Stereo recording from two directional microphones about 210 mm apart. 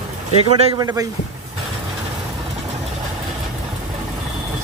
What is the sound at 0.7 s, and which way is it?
Speech, 15° right (ahead or behind).